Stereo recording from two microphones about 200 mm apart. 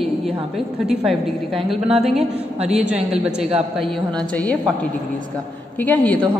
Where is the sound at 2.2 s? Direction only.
30° right (ahead or behind).